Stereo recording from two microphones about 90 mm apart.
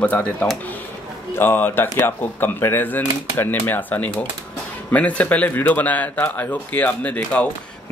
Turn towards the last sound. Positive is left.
turn(degrees=15)  # may be behind; listen again after turning